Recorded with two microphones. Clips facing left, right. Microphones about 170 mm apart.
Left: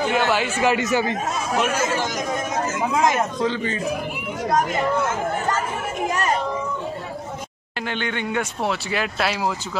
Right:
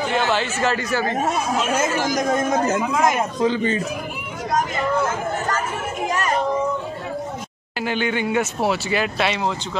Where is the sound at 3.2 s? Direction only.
10° right (ahead or behind).